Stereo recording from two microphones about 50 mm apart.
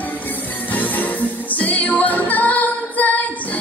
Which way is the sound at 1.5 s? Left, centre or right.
Left.